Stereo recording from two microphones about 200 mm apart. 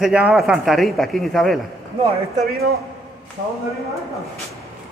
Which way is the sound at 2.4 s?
50° right (ahead or behind).